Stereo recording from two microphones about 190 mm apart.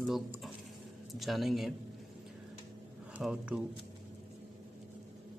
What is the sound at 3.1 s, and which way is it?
Speech, 5° right (ahead or behind).